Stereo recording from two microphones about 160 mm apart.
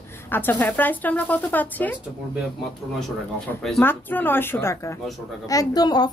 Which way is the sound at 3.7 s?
15° left (ahead or behind).